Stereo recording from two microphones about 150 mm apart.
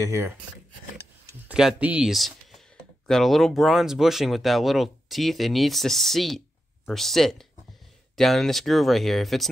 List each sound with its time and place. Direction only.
0.0 s speech: 20° right (ahead or behind)
1.5 s speech: 5° right (ahead or behind)